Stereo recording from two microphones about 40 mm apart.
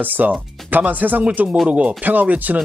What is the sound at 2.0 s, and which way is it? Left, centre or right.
Speech, right.